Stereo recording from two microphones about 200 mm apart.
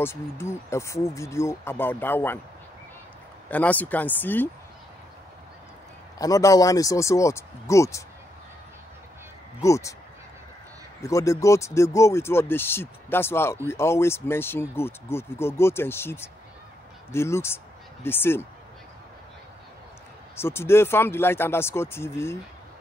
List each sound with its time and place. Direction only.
0.0 s speech: 10° left (ahead or behind)
3.4 s speech: 10° left (ahead or behind)
6.1 s speech: 15° left (ahead or behind)
9.6 s speech: 15° left (ahead or behind)
11.0 s speech: 15° left (ahead or behind)
20.3 s speech: 10° left (ahead or behind)